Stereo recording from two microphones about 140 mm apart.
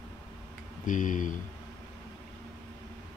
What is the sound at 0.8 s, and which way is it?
Speech, 65° left (ahead or behind).